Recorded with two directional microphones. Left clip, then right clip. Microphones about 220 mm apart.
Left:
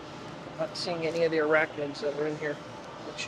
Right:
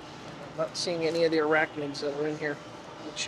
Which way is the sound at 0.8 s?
45° right (ahead or behind).